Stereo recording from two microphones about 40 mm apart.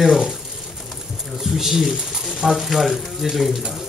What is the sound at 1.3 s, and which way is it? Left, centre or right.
Speech, centre.